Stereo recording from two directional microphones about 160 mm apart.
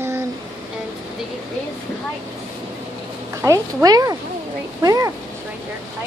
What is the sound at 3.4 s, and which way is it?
Speech, 15° right (ahead or behind).